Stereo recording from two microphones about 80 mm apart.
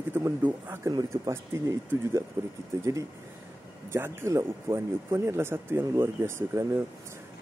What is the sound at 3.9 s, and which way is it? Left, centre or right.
Speech, right.